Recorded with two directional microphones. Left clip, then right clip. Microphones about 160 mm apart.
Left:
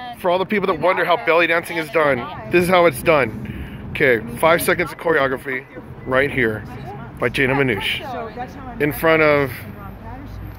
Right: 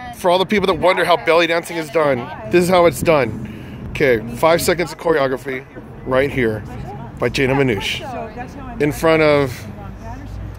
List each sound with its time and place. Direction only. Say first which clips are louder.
0.2 s speech: right 3 dB; 20° right (ahead or behind)